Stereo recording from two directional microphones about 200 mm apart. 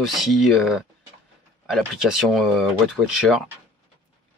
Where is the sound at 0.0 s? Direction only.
Centre (ahead or behind).